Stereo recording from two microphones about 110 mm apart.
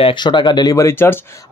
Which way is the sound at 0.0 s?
45° left (ahead or behind).